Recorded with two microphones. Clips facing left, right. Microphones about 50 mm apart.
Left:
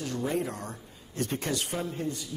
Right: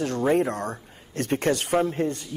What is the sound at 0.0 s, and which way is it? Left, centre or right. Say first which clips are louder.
Speech: right 8 dB; right.